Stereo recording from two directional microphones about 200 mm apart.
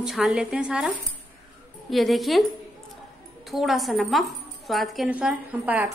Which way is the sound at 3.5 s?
Centre (ahead or behind).